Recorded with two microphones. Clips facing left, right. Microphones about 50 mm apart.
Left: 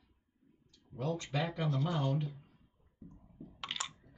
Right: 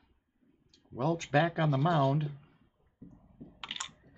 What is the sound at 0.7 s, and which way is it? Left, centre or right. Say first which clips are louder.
Speech: right 6 dB; right.